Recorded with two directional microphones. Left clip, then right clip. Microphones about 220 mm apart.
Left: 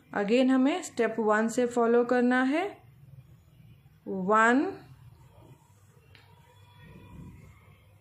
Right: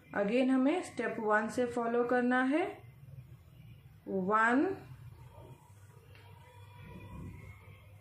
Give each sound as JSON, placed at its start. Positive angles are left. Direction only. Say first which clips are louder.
{"t": 0.1, "sound": "a woman's voice", "louder": "left 5 dB", "side_deg": 50}
{"t": 4.3, "sound": "a woman's voice", "louder": "left 6 dB", "side_deg": 50}